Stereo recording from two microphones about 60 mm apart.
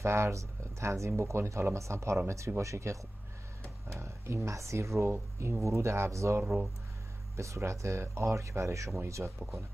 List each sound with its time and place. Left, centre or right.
0.0 s speech: right
3.9 s speech: right
6.4 s speech: centre
7.3 s speech: right